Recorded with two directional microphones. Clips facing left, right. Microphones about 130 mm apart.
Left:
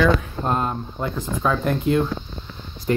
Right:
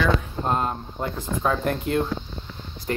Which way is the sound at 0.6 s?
35° right (ahead or behind).